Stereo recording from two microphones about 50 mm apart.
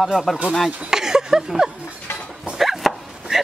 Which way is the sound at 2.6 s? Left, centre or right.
Centre.